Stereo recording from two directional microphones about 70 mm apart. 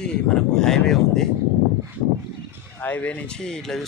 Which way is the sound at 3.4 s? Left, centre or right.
Centre.